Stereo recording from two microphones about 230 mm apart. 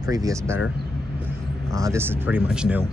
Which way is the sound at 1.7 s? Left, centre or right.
Centre.